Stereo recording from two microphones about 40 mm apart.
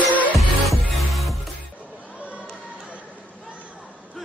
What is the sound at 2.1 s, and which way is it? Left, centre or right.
Crowd, right.